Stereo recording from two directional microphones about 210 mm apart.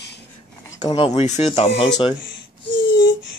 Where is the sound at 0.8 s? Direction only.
20° left (ahead or behind).